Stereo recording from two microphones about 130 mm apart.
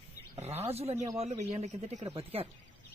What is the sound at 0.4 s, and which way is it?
Wild animals, 55° right (ahead or behind).